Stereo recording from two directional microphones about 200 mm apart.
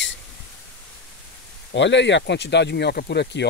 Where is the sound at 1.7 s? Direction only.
60° left (ahead or behind).